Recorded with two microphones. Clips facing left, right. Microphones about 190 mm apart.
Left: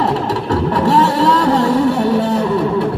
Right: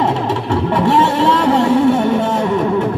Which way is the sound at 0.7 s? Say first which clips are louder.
Even; 40° left (ahead or behind).